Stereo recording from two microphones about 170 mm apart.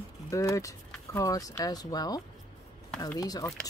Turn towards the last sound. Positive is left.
turn(degrees=20)  # may be behind; listen again after turning